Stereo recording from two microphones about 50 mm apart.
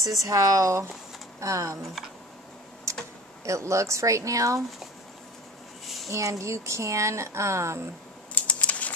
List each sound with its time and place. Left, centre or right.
0.2 s speech: right
2.9 s typing: right
3.4 s speech: right
6.0 s speech: right
8.5 s a sound: left